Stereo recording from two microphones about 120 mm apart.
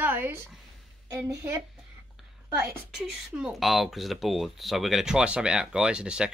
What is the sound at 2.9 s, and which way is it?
Speech, 5° right (ahead or behind).